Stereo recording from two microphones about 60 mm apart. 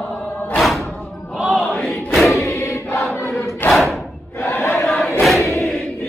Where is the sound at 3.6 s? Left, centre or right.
Left.